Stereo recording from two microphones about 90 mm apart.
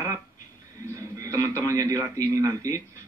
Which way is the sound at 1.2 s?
35° right (ahead or behind).